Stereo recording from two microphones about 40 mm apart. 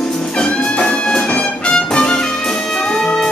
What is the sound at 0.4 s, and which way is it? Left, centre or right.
Music, left.